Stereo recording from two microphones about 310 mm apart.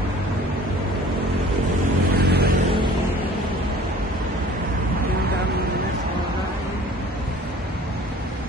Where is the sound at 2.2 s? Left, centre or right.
Right.